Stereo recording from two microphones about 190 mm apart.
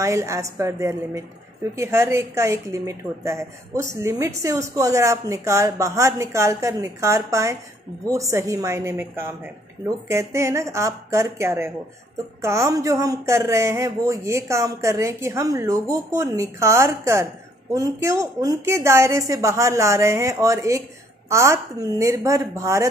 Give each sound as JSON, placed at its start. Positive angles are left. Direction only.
{"t": 0.0, "sound": "a woman's voice", "side_deg": -15}